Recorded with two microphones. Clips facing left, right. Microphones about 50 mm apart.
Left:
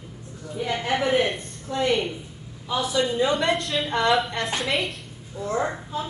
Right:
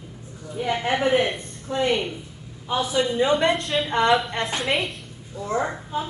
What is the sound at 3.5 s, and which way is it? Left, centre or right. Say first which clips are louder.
A woman's voice: right 1 dB; centre.